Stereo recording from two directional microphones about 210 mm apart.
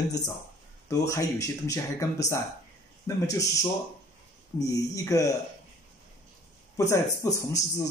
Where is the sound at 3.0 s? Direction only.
15° left (ahead or behind).